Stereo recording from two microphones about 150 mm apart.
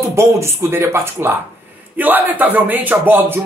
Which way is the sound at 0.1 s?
15° right (ahead or behind).